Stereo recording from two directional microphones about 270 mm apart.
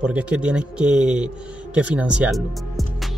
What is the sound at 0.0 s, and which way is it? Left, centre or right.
Speech, centre.